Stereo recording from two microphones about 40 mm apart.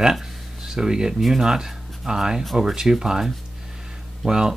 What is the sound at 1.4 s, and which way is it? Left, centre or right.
Speech, centre.